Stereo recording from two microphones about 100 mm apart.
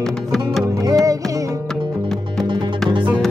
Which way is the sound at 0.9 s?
35° right (ahead or behind).